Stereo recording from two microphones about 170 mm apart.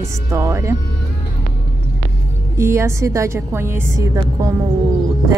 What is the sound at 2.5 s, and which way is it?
Speech, 15° right (ahead or behind).